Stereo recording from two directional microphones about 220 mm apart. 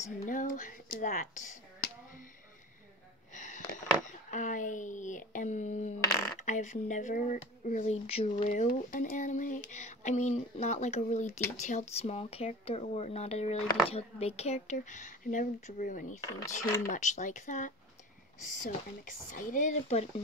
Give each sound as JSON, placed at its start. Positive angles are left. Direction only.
{"t": 0.2, "sound": "speech", "side_deg": 35}
{"t": 3.3, "sound": "a sound", "side_deg": 35}
{"t": 4.3, "sound": "speech", "side_deg": 35}
{"t": 16.2, "sound": "speech", "side_deg": 15}
{"t": 16.9, "sound": "speech", "side_deg": 35}